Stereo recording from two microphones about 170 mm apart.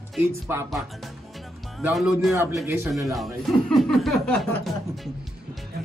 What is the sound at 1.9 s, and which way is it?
Speech, centre (ahead or behind).